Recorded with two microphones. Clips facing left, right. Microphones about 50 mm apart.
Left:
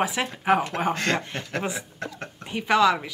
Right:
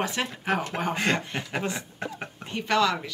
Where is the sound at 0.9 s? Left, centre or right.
Centre.